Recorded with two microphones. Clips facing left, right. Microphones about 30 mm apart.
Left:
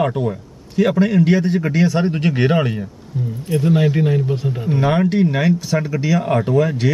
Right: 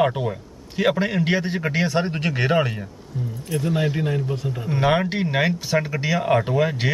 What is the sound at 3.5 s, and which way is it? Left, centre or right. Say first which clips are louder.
Speech: left 6 dB; centre.